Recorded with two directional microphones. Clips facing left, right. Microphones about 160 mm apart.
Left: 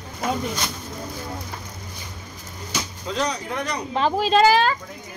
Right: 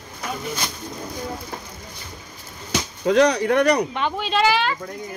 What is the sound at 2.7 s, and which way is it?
Speech, 65° right (ahead or behind).